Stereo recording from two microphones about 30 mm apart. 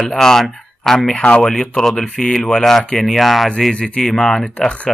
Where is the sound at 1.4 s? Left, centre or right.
Centre.